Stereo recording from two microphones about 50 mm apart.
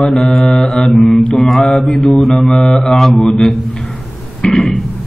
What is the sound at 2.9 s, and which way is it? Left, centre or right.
Mantra, centre.